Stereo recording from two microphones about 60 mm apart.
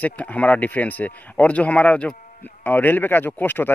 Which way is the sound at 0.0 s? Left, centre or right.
Left.